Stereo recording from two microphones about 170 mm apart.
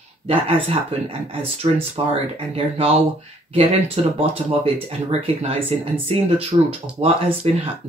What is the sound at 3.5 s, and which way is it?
Speech, 35° right (ahead or behind).